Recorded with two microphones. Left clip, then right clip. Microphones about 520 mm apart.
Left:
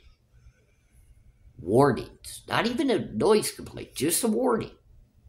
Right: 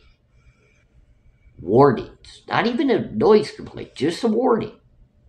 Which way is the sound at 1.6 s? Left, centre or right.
Left.